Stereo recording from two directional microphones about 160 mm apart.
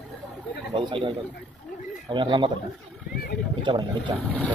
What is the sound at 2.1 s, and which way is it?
Speech, 30° right (ahead or behind).